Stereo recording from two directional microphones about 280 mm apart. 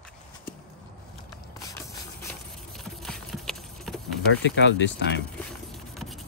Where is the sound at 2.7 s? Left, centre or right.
Centre.